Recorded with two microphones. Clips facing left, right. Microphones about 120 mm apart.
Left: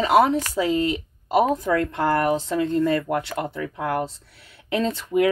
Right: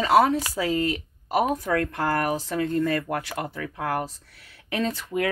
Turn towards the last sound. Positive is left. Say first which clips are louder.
# left 5 dB
turn(degrees=25)  # may be behind; listen again after turning